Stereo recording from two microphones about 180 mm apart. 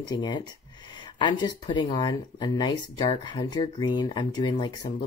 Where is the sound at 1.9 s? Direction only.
25° left (ahead or behind).